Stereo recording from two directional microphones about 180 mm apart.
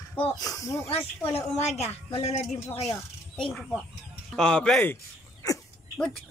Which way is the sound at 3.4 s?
Centre (ahead or behind).